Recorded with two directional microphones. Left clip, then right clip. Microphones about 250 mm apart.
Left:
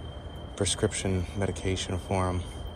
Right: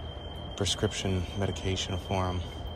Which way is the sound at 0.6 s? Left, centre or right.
Centre.